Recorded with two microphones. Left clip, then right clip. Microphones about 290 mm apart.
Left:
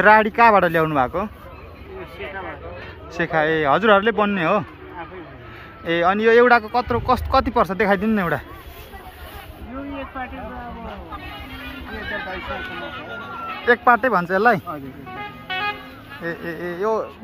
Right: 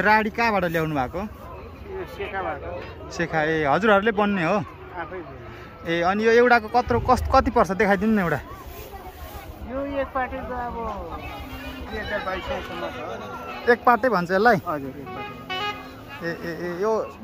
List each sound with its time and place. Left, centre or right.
0.0 s speech: centre
3.2 s speech: centre
5.9 s speech: centre
9.9 s speech: centre
11.9 s speech: right
13.7 s speech: centre
15.4 s music: right
16.3 s speech: centre